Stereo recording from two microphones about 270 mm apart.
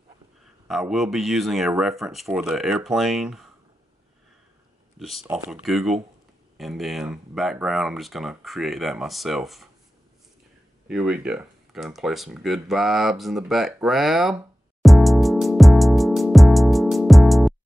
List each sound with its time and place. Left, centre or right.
0.7 s speech: centre
4.9 s speech: centre
10.9 s a sound: centre